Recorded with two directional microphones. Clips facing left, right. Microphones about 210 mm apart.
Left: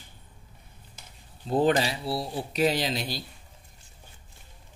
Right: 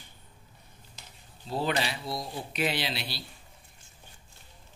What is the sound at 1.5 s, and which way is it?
Speech, 45° left (ahead or behind).